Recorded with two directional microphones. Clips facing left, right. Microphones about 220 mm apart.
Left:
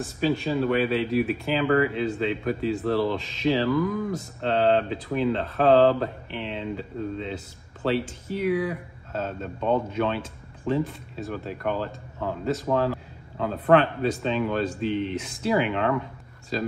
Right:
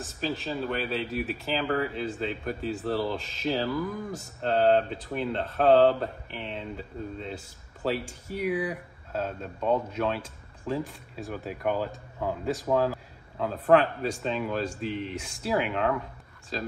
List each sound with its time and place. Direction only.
0.0 s speech: centre (ahead or behind)